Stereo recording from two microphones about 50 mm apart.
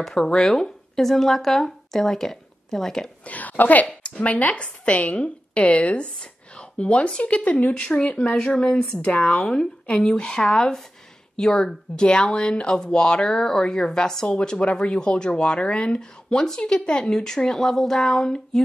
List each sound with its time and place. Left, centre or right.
0.0 s speech: centre
3.3 s a woman's voice: left; by 18.6 s centre